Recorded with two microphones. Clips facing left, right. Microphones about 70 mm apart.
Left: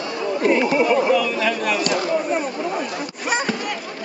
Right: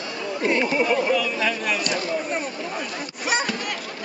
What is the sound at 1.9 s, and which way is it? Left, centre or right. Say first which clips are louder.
Speech: left 5 dB; left.